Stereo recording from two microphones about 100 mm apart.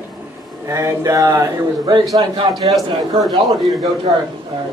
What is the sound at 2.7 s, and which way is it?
Speech, centre (ahead or behind).